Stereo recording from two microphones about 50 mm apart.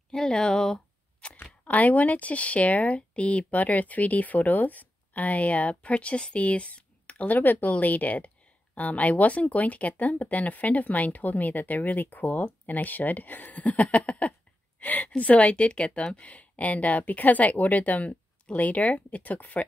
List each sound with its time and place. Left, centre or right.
0.1 s speech: centre
1.6 s speech: left